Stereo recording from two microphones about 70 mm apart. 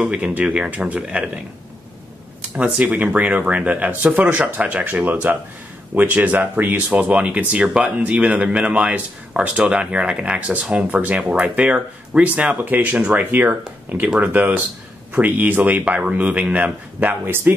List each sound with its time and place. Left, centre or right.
0.0 s speech: centre
2.5 s speech: centre